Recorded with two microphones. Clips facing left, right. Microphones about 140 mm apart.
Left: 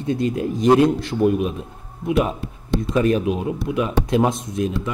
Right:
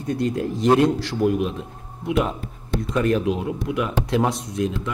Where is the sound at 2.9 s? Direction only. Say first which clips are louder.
Left 1 dB; 20° left (ahead or behind).